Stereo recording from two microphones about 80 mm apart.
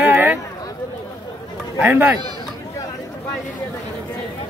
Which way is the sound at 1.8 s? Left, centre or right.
Right.